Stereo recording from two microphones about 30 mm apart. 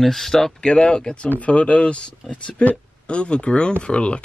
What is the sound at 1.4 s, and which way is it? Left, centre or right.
Speech, left.